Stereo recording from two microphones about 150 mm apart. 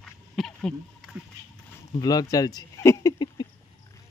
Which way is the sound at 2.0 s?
25° left (ahead or behind).